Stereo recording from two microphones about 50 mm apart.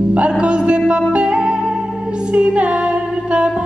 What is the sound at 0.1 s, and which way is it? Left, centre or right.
Music, right.